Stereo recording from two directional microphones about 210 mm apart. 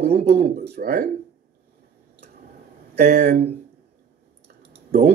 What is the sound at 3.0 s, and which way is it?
Speech, 40° right (ahead or behind).